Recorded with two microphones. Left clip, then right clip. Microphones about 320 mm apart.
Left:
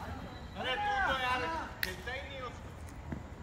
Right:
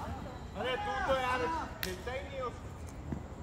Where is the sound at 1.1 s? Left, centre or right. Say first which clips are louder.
Right 1 dB; centre.